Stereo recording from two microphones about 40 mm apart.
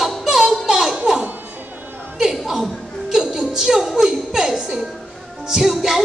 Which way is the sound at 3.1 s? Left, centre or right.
Centre.